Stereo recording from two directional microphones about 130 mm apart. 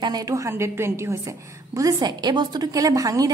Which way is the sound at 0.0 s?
30° right (ahead or behind).